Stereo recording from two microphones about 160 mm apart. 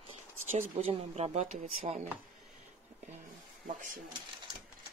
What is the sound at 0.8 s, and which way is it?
Speech, 40° right (ahead or behind).